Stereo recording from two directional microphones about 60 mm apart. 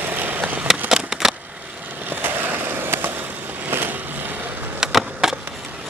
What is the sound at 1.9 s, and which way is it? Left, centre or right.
Skateboard, right.